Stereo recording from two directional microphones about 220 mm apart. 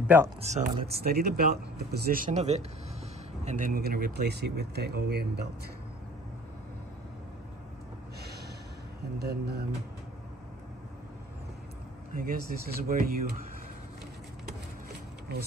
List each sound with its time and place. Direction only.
0.0 s speech: 10° right (ahead or behind)
0.4 s speech: 35° right (ahead or behind)
9.2 s speech: 45° right (ahead or behind)
12.2 s speech: 40° right (ahead or behind)